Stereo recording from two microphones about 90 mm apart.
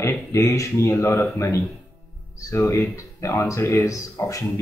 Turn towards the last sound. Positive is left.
turn(degrees=35)  # may be behind; listen again after turning